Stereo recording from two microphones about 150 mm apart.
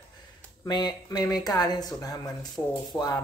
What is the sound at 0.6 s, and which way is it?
A man's voice, 25° left (ahead or behind).